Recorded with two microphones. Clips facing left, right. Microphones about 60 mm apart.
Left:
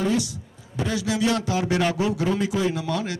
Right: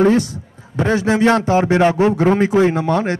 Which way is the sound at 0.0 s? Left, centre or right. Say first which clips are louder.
Right 10 dB; right.